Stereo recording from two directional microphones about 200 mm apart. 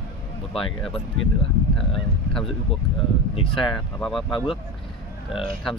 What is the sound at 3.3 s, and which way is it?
Speech, 25° left (ahead or behind).